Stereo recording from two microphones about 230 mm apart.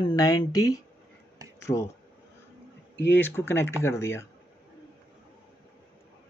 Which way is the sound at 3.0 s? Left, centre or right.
Centre.